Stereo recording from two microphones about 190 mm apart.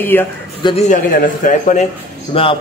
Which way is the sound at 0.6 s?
35° left (ahead or behind).